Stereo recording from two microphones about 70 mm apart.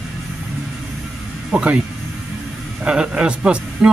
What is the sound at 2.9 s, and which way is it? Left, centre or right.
A man's voice, centre.